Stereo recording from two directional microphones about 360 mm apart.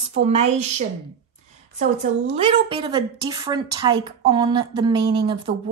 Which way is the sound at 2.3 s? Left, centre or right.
Centre.